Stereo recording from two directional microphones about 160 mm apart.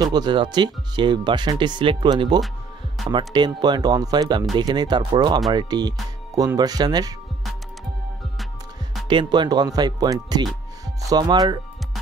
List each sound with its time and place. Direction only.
0.0 s speech: 25° right (ahead or behind)
9.0 s speech: 30° right (ahead or behind)